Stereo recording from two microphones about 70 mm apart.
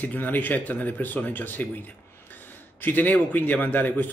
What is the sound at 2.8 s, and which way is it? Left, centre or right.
Speech, left.